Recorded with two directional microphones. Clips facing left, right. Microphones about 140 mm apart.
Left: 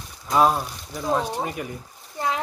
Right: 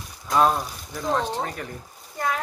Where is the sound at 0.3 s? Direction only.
5° left (ahead or behind).